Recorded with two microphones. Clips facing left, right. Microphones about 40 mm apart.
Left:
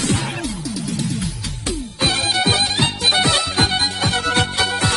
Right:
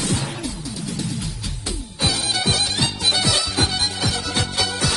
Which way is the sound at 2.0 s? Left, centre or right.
Left.